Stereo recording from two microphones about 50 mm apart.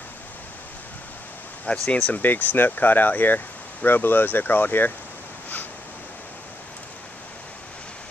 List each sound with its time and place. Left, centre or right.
1.9 s speech: left